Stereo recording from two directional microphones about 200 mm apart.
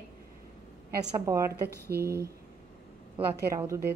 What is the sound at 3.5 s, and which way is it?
Speech, 15° right (ahead or behind).